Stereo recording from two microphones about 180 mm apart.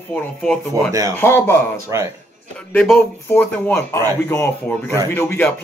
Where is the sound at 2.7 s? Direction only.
5° left (ahead or behind).